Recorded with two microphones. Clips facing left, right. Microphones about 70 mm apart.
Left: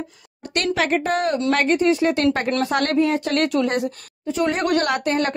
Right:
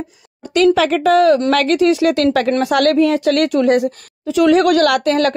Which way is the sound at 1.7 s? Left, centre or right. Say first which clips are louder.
Right 4 dB; right.